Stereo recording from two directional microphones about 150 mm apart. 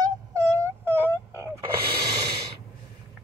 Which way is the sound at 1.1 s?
20° left (ahead or behind).